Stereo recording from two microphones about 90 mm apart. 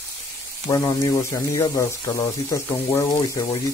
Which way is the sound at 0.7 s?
40° left (ahead or behind).